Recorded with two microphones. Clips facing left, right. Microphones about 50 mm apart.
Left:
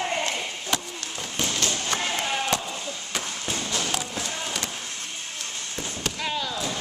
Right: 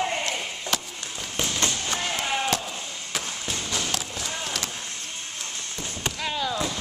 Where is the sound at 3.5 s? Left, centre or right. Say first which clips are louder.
Left 1 dB; centre.